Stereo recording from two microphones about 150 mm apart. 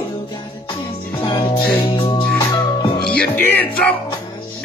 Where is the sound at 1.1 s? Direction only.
35° left (ahead or behind).